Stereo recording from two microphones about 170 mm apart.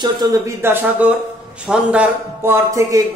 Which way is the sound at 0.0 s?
20° right (ahead or behind).